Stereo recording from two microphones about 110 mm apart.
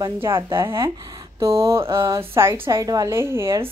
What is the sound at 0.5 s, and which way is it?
A woman's voice, 25° right (ahead or behind).